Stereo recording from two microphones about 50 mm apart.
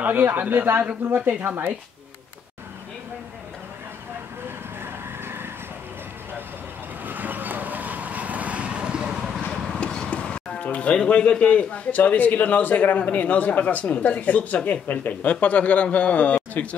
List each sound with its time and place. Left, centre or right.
0.0 s speech: right
5.2 s vehicle: right
7.1 s vehicle: right; by 9.2 s centre
9.5 s speech: centre